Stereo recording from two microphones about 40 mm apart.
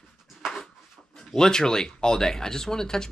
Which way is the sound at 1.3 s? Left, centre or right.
Centre.